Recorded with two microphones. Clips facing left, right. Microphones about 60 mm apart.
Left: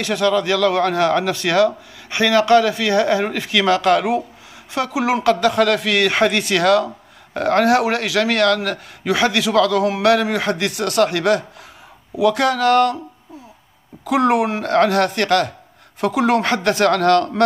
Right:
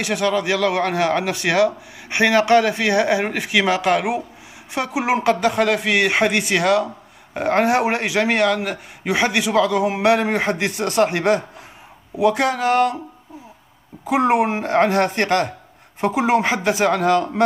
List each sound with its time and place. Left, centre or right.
0.0 s a man's voice: centre
14.0 s a man's voice: right